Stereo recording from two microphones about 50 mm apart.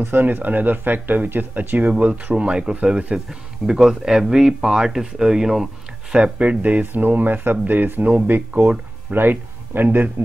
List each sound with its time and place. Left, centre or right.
0.1 s speech: right; by 5.7 s centre
6.1 s speech: right